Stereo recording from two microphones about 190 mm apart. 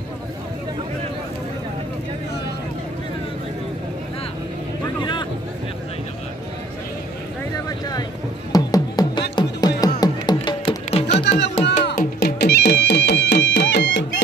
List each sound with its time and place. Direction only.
8.5 s music: 20° left (ahead or behind)
11.9 s music: 50° left (ahead or behind); by 14.0 s 65° left (ahead or behind)